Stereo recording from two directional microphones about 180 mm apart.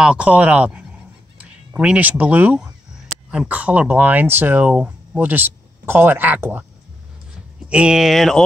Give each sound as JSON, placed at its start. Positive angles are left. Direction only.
{"t": 0.0, "sound": "speech", "side_deg": -5}
{"t": 7.7, "sound": "speech", "side_deg": -5}